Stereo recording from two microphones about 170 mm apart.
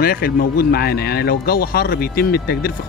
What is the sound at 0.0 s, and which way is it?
Speech, 60° left (ahead or behind).